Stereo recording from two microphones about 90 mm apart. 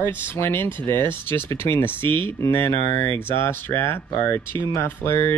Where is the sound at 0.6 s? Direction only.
65° right (ahead or behind).